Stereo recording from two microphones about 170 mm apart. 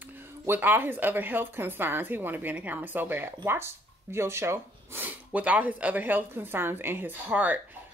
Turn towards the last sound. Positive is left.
turn(degrees=-10)  # may be behind; listen again after turning